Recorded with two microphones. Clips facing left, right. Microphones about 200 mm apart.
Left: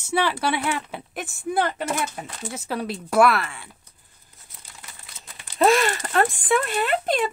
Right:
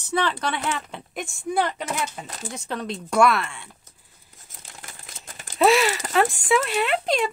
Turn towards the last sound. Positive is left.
turn(degrees=0)  # may be behind; listen again after turning